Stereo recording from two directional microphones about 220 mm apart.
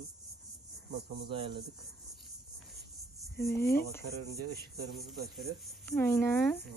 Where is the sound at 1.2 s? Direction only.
25° right (ahead or behind).